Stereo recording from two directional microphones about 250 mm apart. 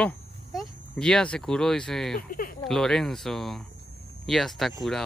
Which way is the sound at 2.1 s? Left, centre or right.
Left.